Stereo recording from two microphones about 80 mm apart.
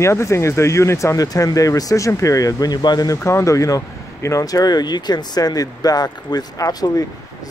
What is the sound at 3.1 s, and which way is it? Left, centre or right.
Speech, left.